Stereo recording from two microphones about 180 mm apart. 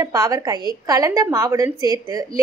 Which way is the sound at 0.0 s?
20° right (ahead or behind).